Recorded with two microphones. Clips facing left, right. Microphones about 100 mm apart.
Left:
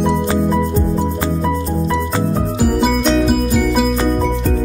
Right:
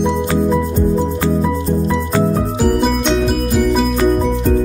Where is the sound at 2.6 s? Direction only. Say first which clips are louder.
Even; centre (ahead or behind).